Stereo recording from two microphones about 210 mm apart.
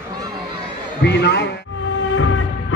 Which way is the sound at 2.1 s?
70° left (ahead or behind).